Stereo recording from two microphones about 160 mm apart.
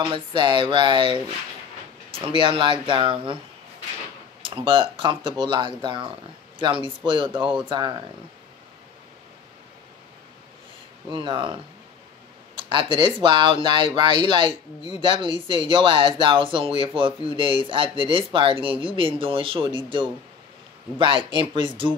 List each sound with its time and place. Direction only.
0.0 s speech: 30° right (ahead or behind)
2.2 s speech: 35° right (ahead or behind)
4.4 s speech: 35° right (ahead or behind)
11.1 s speech: 30° right (ahead or behind)
21.3 s speech: 30° right (ahead or behind)